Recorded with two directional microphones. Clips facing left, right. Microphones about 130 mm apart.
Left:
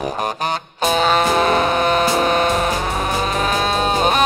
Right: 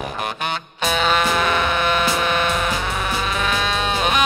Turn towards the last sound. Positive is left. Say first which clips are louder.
# left 4 dB
turn(degrees=35)  # may be behind; listen again after turning